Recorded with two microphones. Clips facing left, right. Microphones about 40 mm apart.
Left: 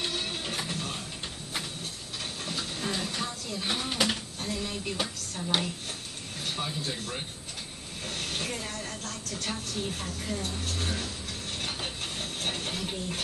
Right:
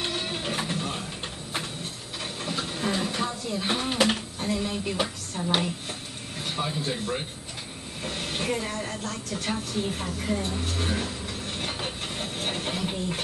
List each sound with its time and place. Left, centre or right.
0.0 s printer: centre
2.4 s a sound: centre
6.4 s speech: centre